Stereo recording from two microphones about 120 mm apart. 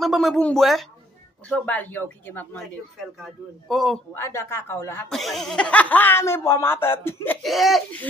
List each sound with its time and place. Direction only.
0.0 s speech: centre (ahead or behind)
0.4 s speech: 10° left (ahead or behind)
3.2 s a man's voice: centre (ahead or behind)
4.1 s speech: 20° left (ahead or behind)
5.1 s speech: centre (ahead or behind); by 7.3 s 20° left (ahead or behind)
7.4 s a man's voice: centre (ahead or behind)